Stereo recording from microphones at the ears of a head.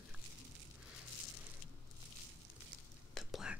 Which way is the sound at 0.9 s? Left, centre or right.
Left.